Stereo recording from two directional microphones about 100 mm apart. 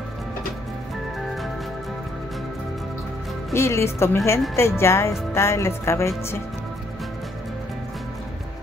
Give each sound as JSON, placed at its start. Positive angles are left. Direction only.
{"t": 3.5, "sound": "a woman's voice", "side_deg": 25}